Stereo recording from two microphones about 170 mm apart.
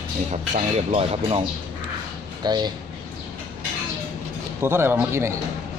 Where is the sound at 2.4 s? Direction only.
25° right (ahead or behind).